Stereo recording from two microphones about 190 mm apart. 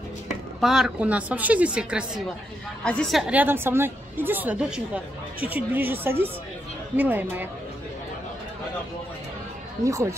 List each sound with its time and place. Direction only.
0.6 s a woman's voice: centre (ahead or behind)
9.8 s a woman's voice: 15° right (ahead or behind)